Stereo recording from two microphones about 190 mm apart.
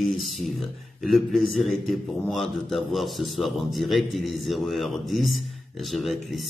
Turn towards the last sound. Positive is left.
turn(degrees=0)  # may be behind; listen again after turning